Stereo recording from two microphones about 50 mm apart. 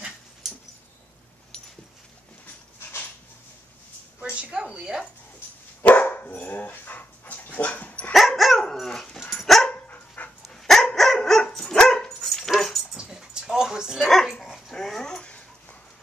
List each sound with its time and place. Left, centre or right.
4.4 s a sound: centre
4.7 s speech: centre
5.8 s dog: left
8.1 s dog: centre
8.8 s dog: centre
9.8 s dog: left
10.5 s dog: centre
12.2 s dog: centre
12.9 s dog: centre
14.0 s dog: centre